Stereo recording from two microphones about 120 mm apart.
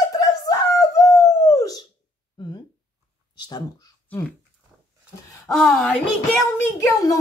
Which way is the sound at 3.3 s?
35° left (ahead or behind).